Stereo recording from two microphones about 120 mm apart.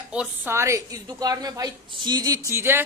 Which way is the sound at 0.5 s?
25° right (ahead or behind).